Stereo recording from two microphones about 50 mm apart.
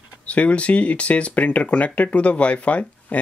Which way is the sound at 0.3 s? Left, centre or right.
Left.